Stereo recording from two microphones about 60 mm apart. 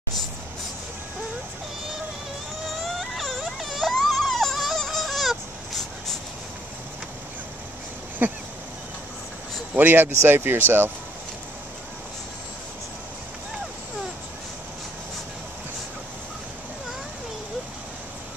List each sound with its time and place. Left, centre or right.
2.6 s a sound: centre
8.2 s speech: right
9.8 s speech: right